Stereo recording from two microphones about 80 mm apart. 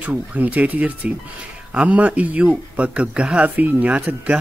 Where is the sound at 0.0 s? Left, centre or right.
Centre.